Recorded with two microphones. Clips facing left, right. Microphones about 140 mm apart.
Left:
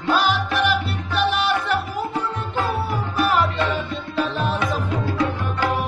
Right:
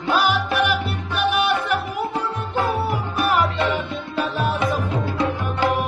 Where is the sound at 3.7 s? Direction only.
10° right (ahead or behind).